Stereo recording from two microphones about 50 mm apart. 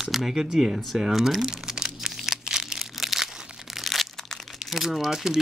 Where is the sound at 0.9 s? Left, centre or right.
Centre.